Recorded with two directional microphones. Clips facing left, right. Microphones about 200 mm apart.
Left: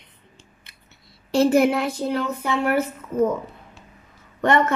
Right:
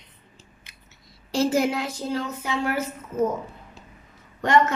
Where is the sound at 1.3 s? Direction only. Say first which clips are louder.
Left 5 dB; 60° left (ahead or behind).